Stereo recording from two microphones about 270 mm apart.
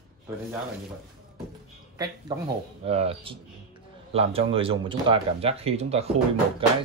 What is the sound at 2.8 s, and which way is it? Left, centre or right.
Speech, right.